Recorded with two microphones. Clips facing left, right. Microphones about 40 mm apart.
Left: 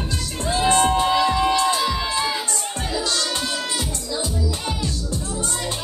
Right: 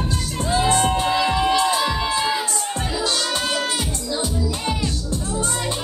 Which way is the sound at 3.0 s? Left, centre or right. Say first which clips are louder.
Right 3 dB; right.